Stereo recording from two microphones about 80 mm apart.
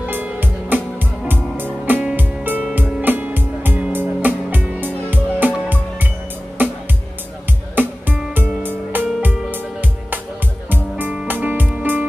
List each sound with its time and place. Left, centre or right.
0.0 s music: right
6.6 s music: right